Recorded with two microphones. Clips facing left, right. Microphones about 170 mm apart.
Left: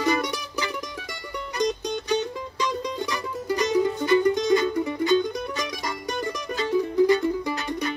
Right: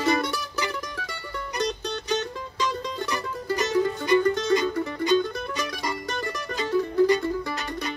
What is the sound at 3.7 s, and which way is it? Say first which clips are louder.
Music: left 1 dB; 20° left (ahead or behind).